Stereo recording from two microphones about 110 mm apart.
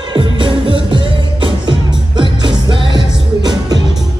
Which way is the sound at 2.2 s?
40° right (ahead or behind).